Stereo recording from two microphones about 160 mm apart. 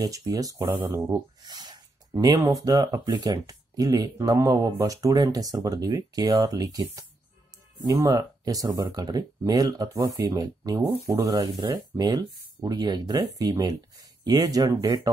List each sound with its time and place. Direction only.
0.0 s speech: 20° right (ahead or behind)